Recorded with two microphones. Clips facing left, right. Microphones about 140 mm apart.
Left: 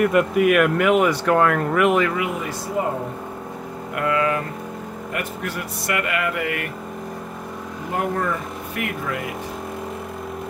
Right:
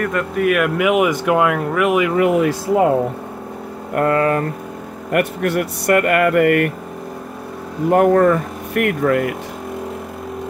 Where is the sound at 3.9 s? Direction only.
45° right (ahead or behind).